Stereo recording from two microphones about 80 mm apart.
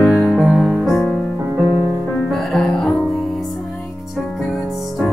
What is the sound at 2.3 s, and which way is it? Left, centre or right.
Music, centre.